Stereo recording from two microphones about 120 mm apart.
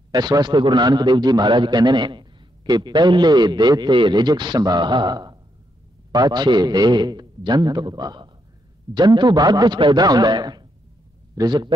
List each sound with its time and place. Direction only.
0.1 s a man's voice: 35° right (ahead or behind)